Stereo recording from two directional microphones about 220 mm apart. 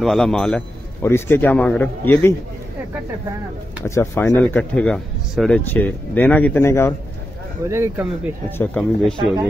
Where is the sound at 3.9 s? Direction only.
10° left (ahead or behind).